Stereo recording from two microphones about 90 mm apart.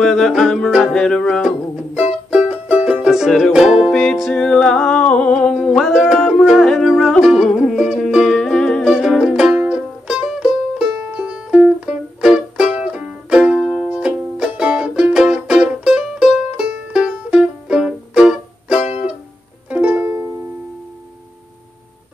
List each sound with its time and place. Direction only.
0.0 s music: 5° left (ahead or behind)
2.0 s music: 10° right (ahead or behind); by 5.5 s 10° left (ahead or behind)
5.5 s music: centre (ahead or behind)
8.4 s music: 10° left (ahead or behind)
8.8 s music: 5° right (ahead or behind); by 20.2 s 20° right (ahead or behind)